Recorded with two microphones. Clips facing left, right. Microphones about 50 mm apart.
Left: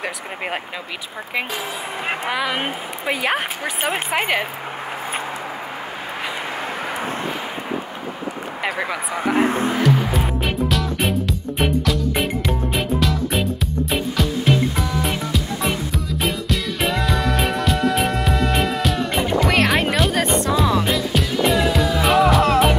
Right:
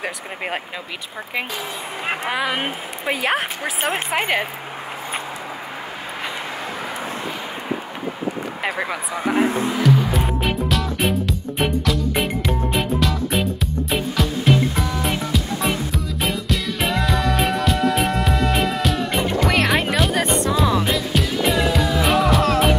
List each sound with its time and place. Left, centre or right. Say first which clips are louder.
2.3 s a woman's voice: even; centre
8.6 s a sound: left 1 dB; centre
9.5 s speech: left 1 dB; left
10.1 s music: even; centre